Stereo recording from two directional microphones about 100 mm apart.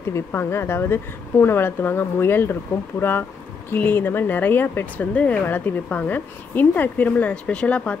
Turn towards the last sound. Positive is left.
turn(degrees=10)  # may be behind; listen again after turning